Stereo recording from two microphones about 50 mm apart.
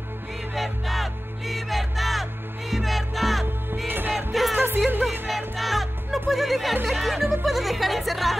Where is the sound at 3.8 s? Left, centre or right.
Right.